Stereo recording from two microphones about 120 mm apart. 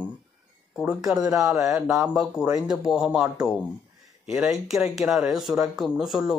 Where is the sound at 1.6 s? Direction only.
5° right (ahead or behind).